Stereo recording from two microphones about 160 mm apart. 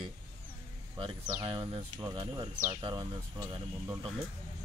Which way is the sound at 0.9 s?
30° right (ahead or behind).